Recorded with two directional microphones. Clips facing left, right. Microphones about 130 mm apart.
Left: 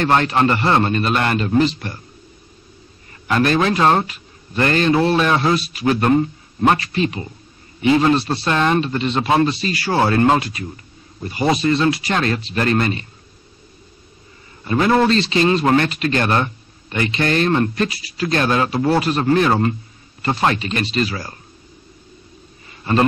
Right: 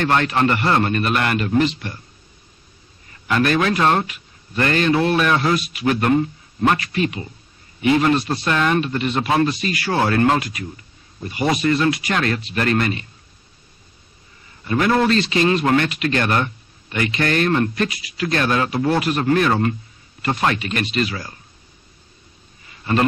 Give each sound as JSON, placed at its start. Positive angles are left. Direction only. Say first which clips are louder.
{"t": 0.0, "sound": "speech", "louder": "left 2 dB", "side_deg": 30}
{"t": 3.3, "sound": "a man's voice", "louder": "left 1 dB", "side_deg": 30}
{"t": 14.6, "sound": "a man's voice", "louder": "left 2 dB", "side_deg": 30}